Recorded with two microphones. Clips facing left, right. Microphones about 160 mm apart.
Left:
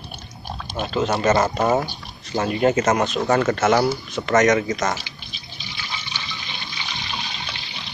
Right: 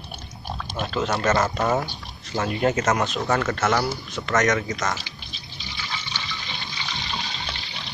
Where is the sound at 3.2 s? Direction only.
15° left (ahead or behind).